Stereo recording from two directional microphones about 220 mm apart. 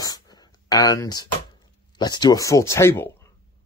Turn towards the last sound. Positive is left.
turn(degrees=10)  # may be behind; listen again after turning